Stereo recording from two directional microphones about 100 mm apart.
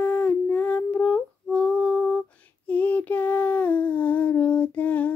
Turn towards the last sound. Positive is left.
turn(degrees=15)  # may be behind; listen again after turning